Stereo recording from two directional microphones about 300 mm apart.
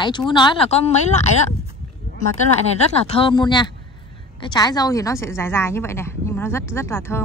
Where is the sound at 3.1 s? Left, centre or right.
Centre.